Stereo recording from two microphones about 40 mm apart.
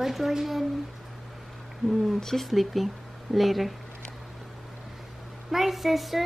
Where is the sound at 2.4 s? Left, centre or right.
Centre.